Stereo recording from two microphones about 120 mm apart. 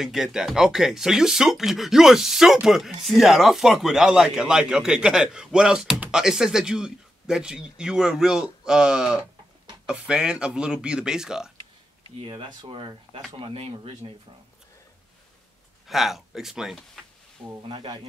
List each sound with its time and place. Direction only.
0.0 s speech: 5° right (ahead or behind)
12.2 s speech: 45° right (ahead or behind)
15.9 s speech: centre (ahead or behind)
17.6 s speech: 45° right (ahead or behind)